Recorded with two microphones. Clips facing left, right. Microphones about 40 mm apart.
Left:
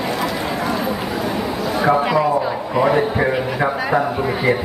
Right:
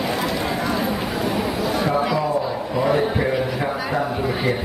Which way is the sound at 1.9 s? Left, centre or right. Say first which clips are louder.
Left 4 dB; left.